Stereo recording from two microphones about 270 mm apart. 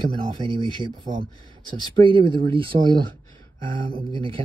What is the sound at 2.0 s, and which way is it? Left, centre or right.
Speech, centre.